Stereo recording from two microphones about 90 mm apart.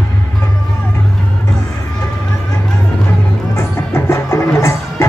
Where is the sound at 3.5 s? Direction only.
30° left (ahead or behind).